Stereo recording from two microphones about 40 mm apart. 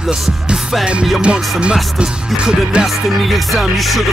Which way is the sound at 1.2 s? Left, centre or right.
Right.